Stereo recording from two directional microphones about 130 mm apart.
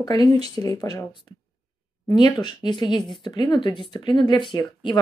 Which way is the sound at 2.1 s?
35° left (ahead or behind).